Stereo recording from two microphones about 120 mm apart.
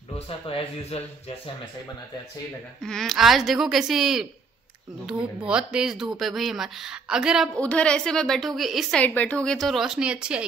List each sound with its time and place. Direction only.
0.5 s speech: 55° left (ahead or behind)
2.8 s speech: 5° left (ahead or behind)
7.5 s speech: 10° left (ahead or behind)
9.0 s speech: 15° left (ahead or behind); by 10.4 s 10° right (ahead or behind)